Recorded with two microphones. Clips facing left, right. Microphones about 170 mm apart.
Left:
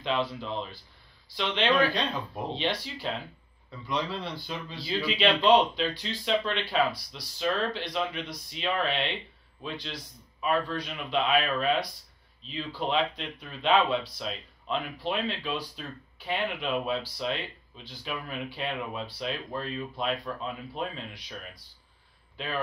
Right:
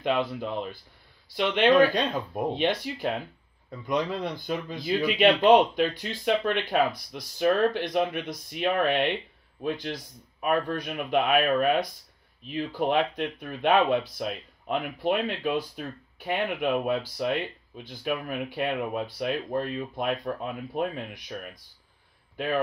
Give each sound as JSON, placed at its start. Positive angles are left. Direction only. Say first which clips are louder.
{"t": 0.0, "sound": "speech", "louder": "right 3 dB", "side_deg": -50}